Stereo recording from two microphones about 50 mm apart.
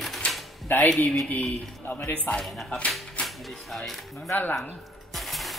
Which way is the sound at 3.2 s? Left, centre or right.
Centre.